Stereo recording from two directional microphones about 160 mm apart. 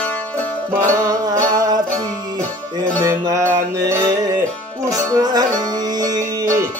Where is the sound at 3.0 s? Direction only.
20° right (ahead or behind).